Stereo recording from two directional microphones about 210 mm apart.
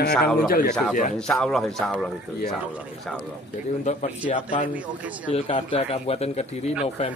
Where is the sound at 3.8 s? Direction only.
35° left (ahead or behind).